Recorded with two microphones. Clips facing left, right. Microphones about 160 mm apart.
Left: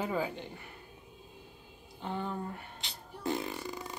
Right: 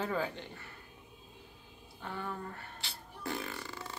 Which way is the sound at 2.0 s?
20° left (ahead or behind).